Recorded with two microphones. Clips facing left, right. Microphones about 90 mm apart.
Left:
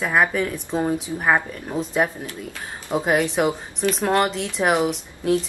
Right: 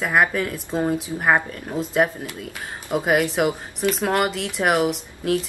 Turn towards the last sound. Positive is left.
turn(degrees=0)  # may be behind; listen again after turning